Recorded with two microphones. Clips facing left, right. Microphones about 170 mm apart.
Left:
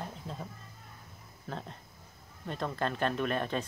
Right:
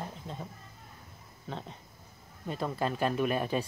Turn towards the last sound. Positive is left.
turn(degrees=-10)  # may be behind; listen again after turning